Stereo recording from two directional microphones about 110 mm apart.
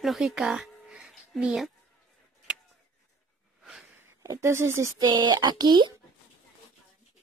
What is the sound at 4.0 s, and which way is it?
Speech, 25° right (ahead or behind).